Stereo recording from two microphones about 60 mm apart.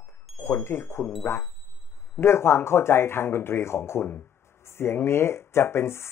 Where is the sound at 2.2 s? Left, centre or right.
Left.